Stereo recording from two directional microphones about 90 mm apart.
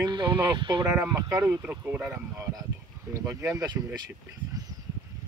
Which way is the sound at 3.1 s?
35° right (ahead or behind).